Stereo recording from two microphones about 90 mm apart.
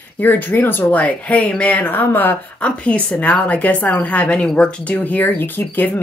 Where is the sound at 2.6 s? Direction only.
10° left (ahead or behind).